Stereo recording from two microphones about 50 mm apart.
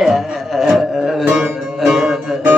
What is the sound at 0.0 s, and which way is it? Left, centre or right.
Music, centre.